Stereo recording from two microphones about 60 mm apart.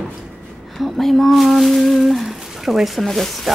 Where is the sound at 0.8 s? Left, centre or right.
Centre.